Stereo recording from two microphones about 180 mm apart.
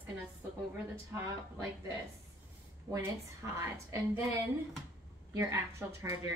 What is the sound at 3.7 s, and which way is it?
Speech, 15° right (ahead or behind).